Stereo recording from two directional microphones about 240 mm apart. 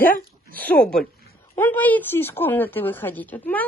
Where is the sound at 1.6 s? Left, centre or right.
Centre.